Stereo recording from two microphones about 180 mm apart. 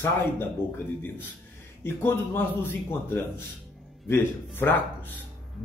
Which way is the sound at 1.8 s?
10° left (ahead or behind).